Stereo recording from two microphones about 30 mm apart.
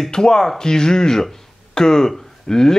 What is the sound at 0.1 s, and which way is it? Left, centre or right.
Speech, centre.